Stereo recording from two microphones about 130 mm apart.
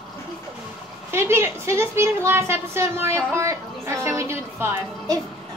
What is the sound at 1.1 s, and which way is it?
A woman's voice, 20° right (ahead or behind).